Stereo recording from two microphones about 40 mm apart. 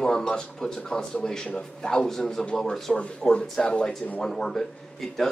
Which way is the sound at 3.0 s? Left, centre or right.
Left.